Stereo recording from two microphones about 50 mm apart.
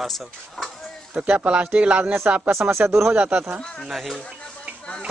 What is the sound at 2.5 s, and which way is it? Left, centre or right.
Speech, right.